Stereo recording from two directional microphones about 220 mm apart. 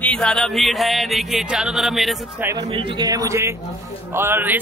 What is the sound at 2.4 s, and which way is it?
A man's voice, 20° right (ahead or behind).